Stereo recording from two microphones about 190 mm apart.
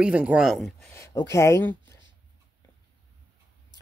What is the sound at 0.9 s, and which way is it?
Speech, 15° left (ahead or behind).